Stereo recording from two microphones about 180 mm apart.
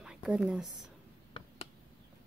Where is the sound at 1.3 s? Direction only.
35° left (ahead or behind).